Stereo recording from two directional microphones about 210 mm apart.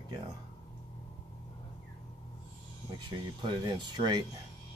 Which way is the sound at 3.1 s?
20° right (ahead or behind).